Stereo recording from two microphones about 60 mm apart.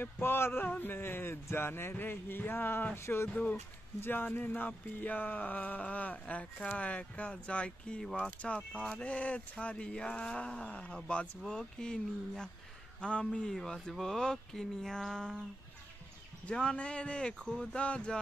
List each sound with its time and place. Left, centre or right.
0.0 s speech: left
3.0 s speech: left
4.0 s a sound: left; by 8.3 s centre
8.3 s a sound: left
11.1 s speech: centre
16.4 s speech: centre